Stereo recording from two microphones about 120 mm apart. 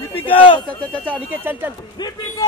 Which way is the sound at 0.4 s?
45° left (ahead or behind).